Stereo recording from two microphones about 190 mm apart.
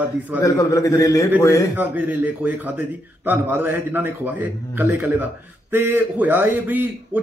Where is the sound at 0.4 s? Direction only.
15° left (ahead or behind).